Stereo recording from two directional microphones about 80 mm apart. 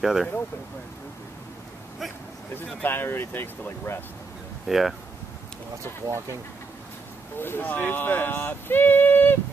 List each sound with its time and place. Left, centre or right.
0.0 s speech: centre
2.5 s speech: left
4.6 s speech: centre
6.0 s speech: right
7.3 s speech: left